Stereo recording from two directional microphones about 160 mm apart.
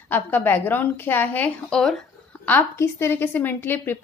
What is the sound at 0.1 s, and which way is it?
A woman's voice, 10° left (ahead or behind).